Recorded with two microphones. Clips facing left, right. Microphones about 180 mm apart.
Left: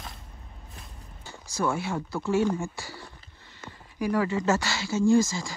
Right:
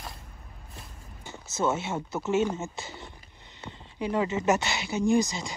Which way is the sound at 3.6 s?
35° right (ahead or behind).